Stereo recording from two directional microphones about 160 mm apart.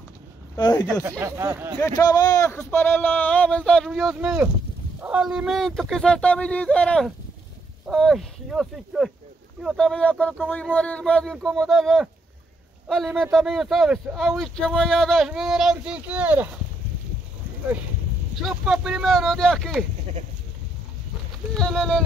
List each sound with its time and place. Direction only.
0.6 s speech: 25° left (ahead or behind)
1.2 s speech: 15° right (ahead or behind)
1.8 s speech: 20° left (ahead or behind); by 16.4 s 10° right (ahead or behind)
18.3 s speech: centre (ahead or behind)
21.5 s speech: 5° left (ahead or behind)